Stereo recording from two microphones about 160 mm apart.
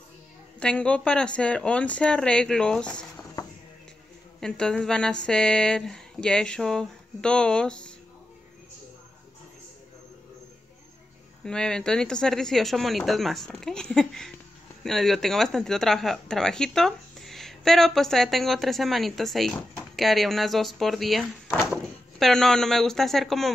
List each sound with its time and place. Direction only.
0.6 s speech: 5° left (ahead or behind)
3.4 s a sound: 25° left (ahead or behind)
4.4 s speech: 5° left (ahead or behind)
11.4 s speech: 5° left (ahead or behind)